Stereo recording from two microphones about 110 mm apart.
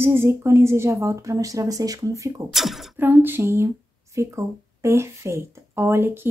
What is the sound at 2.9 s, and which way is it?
Speech, 20° right (ahead or behind).